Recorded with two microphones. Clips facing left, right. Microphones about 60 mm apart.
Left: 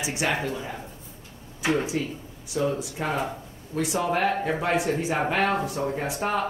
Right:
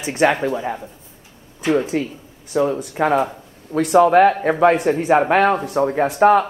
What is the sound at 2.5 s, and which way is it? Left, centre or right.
Speech, right.